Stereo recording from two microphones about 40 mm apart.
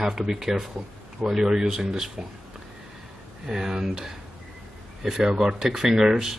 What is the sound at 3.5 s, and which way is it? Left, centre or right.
Speech, centre.